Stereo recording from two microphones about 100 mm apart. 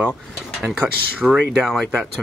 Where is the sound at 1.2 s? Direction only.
Centre (ahead or behind).